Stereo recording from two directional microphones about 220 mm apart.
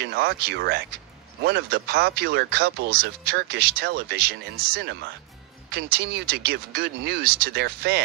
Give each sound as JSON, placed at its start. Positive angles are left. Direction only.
{"t": 0.0, "sound": "speech", "side_deg": -45}